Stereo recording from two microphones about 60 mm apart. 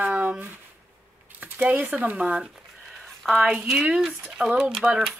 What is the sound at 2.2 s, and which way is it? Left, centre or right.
Speech, centre.